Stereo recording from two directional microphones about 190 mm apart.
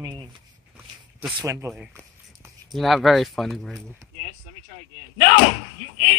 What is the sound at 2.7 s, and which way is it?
Speech, centre (ahead or behind).